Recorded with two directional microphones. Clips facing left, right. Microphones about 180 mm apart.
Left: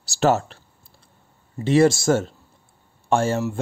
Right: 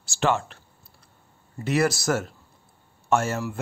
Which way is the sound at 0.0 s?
40° left (ahead or behind).